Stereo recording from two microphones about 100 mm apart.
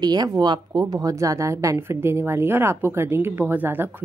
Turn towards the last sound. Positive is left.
turn(degrees=-20)  # may be behind; listen again after turning